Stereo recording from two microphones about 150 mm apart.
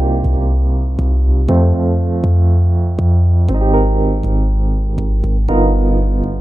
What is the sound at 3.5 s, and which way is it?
Music, 35° right (ahead or behind).